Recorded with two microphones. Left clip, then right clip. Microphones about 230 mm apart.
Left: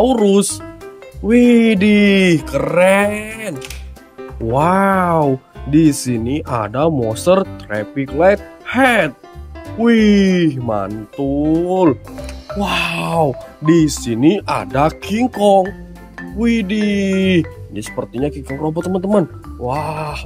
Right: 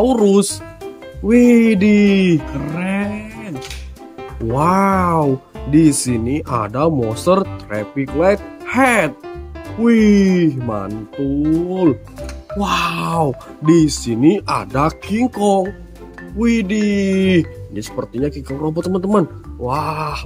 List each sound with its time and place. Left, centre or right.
0.0 s speech: centre; by 3.5 s left
4.5 s speech: centre
12.5 s speech: centre